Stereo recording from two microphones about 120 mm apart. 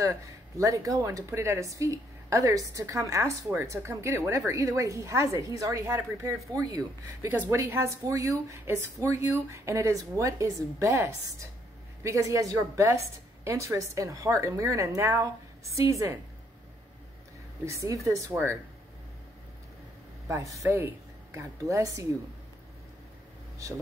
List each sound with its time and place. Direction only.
0.0 s speech: 25° right (ahead or behind)
17.6 s speech: 25° right (ahead or behind)
20.2 s a woman's voice: 25° right (ahead or behind)